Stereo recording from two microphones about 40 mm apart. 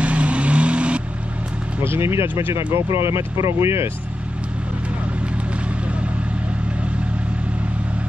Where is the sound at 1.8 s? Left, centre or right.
Right.